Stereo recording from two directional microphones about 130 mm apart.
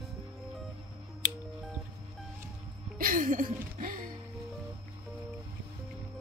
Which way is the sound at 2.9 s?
90° right.